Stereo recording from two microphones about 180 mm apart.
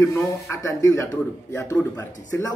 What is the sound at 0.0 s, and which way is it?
Speech, 15° left (ahead or behind).